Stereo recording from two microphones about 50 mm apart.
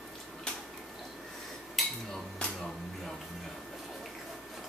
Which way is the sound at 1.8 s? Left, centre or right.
Centre.